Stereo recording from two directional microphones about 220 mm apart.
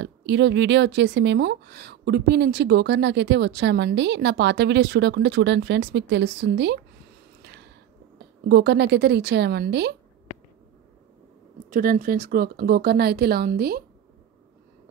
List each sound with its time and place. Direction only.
0.0 s speech: 50° right (ahead or behind)
7.4 s a sound: 50° right (ahead or behind)
8.5 s speech: 50° right (ahead or behind)
11.7 s speech: 40° right (ahead or behind)